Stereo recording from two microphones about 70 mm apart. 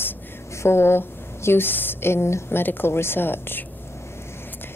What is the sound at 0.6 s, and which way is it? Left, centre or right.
A woman's voice, left.